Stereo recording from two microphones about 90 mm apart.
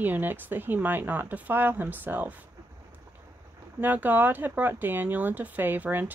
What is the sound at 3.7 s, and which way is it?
Speech, 20° right (ahead or behind).